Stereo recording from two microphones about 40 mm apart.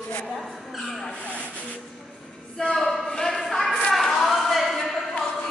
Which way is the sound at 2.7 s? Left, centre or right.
Centre.